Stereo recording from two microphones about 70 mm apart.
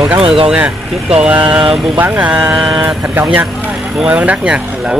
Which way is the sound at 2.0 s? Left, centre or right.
Right.